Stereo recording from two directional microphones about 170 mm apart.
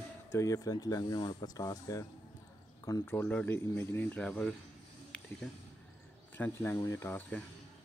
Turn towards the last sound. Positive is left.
turn(degrees=15)  # may be behind; listen again after turning